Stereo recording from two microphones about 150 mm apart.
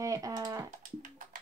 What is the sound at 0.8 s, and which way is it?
Music, 60° right (ahead or behind).